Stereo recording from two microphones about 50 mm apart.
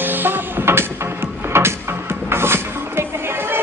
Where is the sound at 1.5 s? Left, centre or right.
Right.